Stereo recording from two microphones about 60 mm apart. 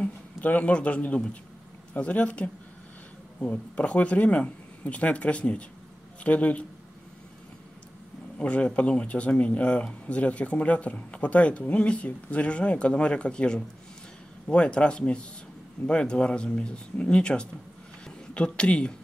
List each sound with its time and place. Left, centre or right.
0.4 s speech: left
8.4 s speech: left